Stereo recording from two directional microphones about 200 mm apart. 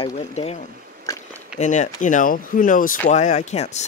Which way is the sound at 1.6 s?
35° left (ahead or behind).